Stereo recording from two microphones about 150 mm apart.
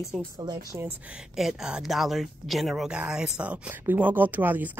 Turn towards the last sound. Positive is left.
turn(degrees=-10)  # may be behind; listen again after turning